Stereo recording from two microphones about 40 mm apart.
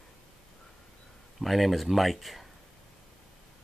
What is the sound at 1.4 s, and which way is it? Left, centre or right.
Speech, centre.